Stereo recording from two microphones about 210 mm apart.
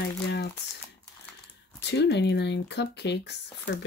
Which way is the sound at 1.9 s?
55° left (ahead or behind).